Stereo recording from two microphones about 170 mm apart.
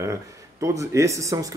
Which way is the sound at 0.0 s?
20° right (ahead or behind).